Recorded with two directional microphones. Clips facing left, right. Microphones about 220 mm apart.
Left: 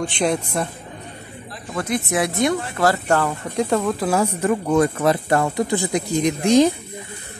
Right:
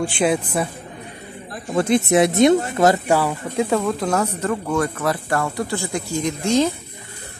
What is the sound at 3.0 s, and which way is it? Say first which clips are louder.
Speech: right 1 dB; 10° right (ahead or behind).